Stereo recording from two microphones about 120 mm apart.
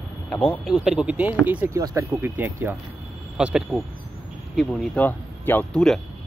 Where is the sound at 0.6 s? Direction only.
5° right (ahead or behind).